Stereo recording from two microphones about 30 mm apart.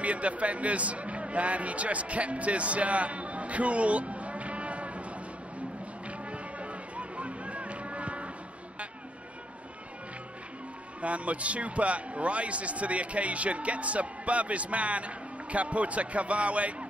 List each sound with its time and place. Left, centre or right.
0.0 s speech: right
6.0 s music: right
11.0 s a man's voice: right